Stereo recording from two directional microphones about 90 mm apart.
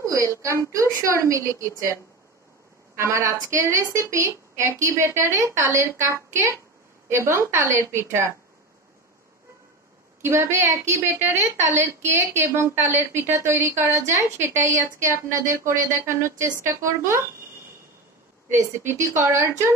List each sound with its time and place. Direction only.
0.7 s a woman's voice: 35° right (ahead or behind)
3.0 s a woman's voice: 35° right (ahead or behind)
10.2 s a woman's voice: 30° right (ahead or behind)
18.5 s a woman's voice: 30° right (ahead or behind)